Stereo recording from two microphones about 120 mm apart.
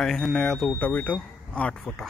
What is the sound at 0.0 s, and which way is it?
Speech, 5° left (ahead or behind).